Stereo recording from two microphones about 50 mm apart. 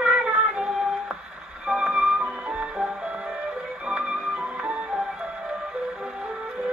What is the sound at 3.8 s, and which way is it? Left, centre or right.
Music, centre.